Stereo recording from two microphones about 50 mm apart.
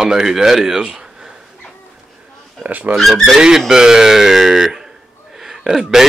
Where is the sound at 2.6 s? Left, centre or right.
Right.